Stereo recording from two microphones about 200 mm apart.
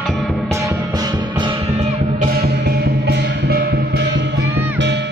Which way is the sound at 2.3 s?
50° right (ahead or behind).